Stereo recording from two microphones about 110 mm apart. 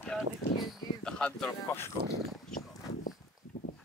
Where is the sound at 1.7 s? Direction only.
25° left (ahead or behind).